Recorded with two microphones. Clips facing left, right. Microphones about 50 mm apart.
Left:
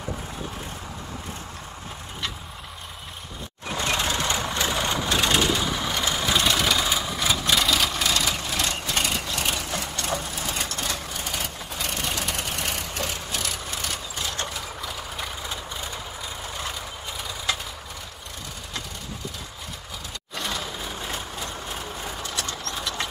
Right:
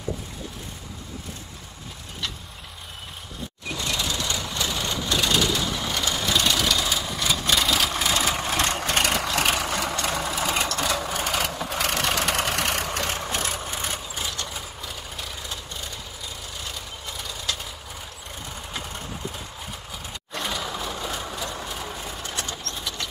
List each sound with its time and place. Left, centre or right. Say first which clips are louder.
3.7 s vehicle: left 3 dB; left
5.6 s vehicle: left 1 dB; centre
7.5 s vehicle: even; centre
7.9 s vehicle: right 1 dB; centre
8.8 s vehicle: right 3 dB; right
9.6 s vehicle: right 5 dB; right
13.2 s vehicle: right 3 dB; right; by 14.3 s centre
14.8 s vehicle: left 3 dB; centre
22.2 s vehicle: left 1 dB; right